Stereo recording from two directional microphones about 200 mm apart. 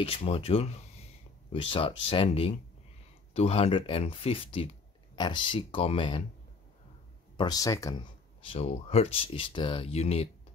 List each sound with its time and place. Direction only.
0.0 s speech: 30° left (ahead or behind)
7.3 s speech: 20° left (ahead or behind)
8.5 s speech: 30° left (ahead or behind)